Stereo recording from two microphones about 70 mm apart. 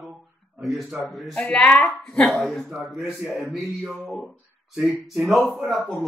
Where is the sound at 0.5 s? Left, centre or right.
Centre.